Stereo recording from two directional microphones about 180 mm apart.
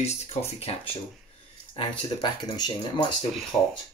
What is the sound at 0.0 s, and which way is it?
Speech, 35° left (ahead or behind).